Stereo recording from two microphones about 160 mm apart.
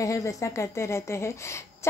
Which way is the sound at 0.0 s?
20° left (ahead or behind).